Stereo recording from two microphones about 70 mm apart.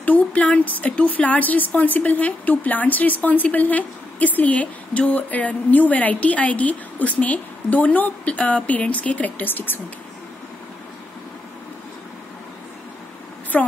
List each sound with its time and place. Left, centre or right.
0.0 s a woman's voice: left
13.5 s a woman's voice: centre